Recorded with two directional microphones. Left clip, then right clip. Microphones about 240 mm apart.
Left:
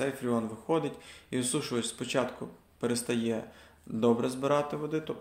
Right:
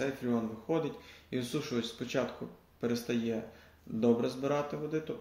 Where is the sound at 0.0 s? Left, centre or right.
Centre.